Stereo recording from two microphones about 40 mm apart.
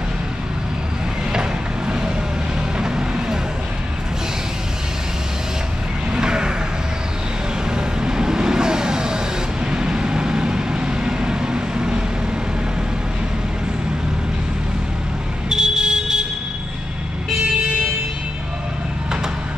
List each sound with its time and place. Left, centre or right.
1.3 s vehicle: right
6.1 s vehicle: centre
7.7 s vehicle: centre
15.5 s smoke detector: centre